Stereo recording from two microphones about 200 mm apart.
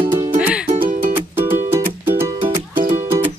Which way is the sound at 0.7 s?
45° right (ahead or behind).